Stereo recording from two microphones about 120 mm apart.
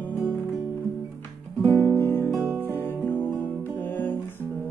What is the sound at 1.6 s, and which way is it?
Music, 35° right (ahead or behind).